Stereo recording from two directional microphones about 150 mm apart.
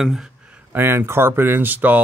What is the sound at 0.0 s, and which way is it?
Speech, centre (ahead or behind).